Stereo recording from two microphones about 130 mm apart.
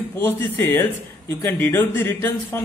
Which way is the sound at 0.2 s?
20° left (ahead or behind).